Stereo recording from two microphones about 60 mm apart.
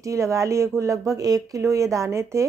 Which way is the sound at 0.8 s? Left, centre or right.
Right.